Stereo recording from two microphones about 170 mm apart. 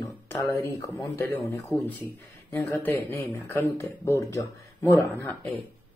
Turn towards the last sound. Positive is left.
turn(degrees=10)  # may be behind; listen again after turning